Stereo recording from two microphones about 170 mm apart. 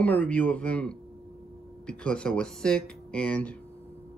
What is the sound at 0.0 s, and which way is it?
A man's voice, 10° left (ahead or behind).